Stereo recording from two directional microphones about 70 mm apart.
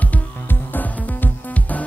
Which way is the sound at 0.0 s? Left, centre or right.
Left.